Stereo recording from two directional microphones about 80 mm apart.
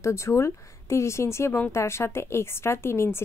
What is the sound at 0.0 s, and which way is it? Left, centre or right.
A woman's voice, left.